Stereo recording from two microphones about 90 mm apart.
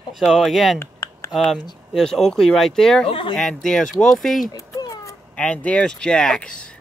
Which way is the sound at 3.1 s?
70° left (ahead or behind).